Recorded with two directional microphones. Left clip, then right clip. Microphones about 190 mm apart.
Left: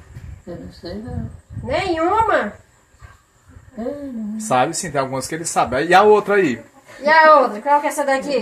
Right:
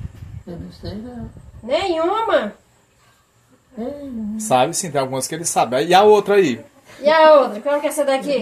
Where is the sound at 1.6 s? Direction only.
20° left (ahead or behind).